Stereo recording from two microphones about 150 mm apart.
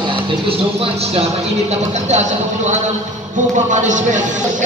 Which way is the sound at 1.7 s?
50° right (ahead or behind).